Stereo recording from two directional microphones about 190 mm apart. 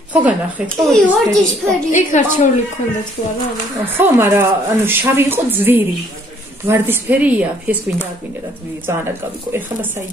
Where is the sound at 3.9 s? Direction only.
10° right (ahead or behind).